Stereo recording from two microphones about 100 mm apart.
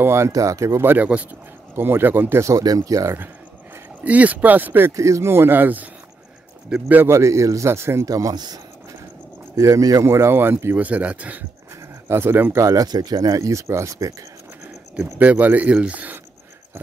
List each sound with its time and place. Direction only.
0.0 s speech: 25° right (ahead or behind)
4.0 s speech: 15° right (ahead or behind)
4.9 s speech: 30° right (ahead or behind)
9.6 s speech: 35° right (ahead or behind)
12.6 s speech: 40° right (ahead or behind)
14.6 s a sound: 30° right (ahead or behind)
15.1 s speech: 15° right (ahead or behind)